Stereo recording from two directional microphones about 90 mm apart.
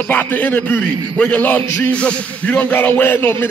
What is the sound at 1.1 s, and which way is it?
Speech, 10° left (ahead or behind).